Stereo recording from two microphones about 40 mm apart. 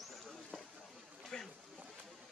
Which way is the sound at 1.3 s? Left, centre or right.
Left.